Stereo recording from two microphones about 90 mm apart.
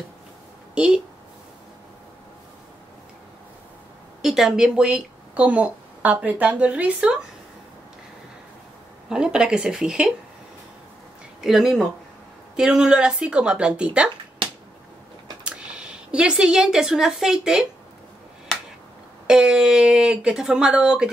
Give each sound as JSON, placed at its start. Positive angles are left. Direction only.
{"t": 0.7, "sound": "speech", "side_deg": -10}
{"t": 4.2, "sound": "a woman's voice", "side_deg": -5}
{"t": 9.1, "sound": "speech", "side_deg": -10}
{"t": 11.4, "sound": "speech", "side_deg": -5}
{"t": 14.4, "sound": "finger snapping", "side_deg": -80}
{"t": 15.4, "sound": "speech", "side_deg": -10}
{"t": 19.2, "sound": "speech", "side_deg": -10}